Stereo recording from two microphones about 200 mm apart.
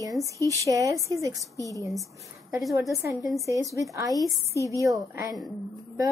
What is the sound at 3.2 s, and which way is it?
Speech, centre (ahead or behind).